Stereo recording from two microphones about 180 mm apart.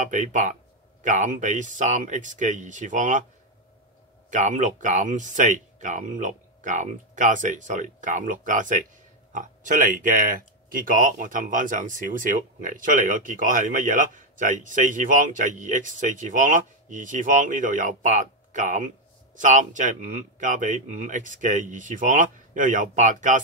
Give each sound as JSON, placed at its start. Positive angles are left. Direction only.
{"t": 0.1, "sound": "speech", "side_deg": -45}
{"t": 4.3, "sound": "speech", "side_deg": -45}